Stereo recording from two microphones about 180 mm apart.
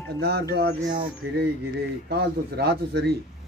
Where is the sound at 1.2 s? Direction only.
70° right (ahead or behind).